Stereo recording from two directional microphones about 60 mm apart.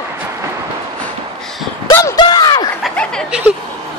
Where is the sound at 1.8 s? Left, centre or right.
Left.